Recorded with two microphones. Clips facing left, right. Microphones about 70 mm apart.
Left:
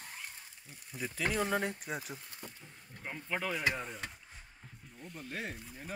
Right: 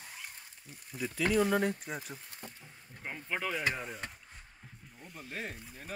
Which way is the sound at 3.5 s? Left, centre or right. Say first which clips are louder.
Left 1 dB; centre.